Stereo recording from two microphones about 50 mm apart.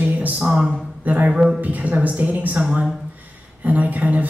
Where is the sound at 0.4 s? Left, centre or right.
Centre.